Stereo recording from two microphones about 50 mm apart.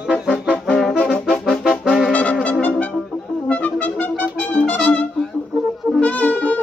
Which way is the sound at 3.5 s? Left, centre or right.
Left.